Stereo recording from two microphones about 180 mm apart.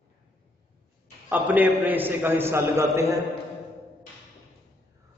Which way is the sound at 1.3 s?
10° right (ahead or behind).